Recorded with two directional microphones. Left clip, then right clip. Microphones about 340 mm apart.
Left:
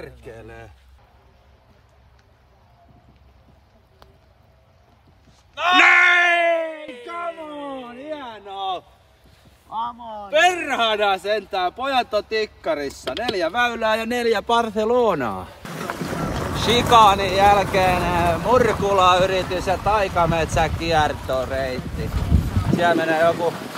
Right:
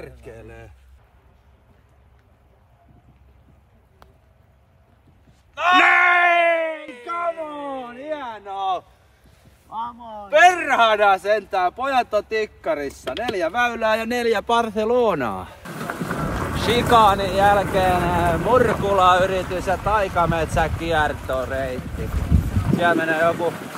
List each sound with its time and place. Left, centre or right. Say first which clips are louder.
0.0 s speech: left 1 dB; centre
5.5 s a sound: left 1 dB; centre
6.8 s a sound: right 3 dB; centre
9.7 s speech: left 2 dB; centre
10.3 s speech: right 4 dB; centre
16.5 s speech: left 2 dB; centre
22.3 s boat: even; centre
22.8 s speech: left 1 dB; left